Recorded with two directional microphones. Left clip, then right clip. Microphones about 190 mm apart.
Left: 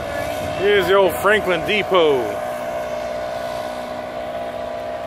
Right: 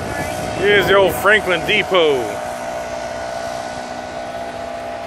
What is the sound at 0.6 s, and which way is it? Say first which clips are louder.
Speech: right 2 dB; centre (ahead or behind).